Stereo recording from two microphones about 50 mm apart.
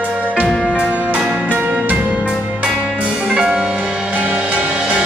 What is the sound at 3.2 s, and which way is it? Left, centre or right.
Music, right.